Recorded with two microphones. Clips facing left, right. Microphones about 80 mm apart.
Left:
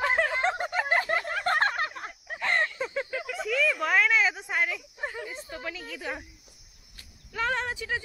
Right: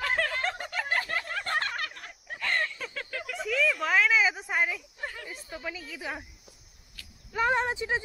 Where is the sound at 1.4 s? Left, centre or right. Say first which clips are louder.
Left 7 dB; left.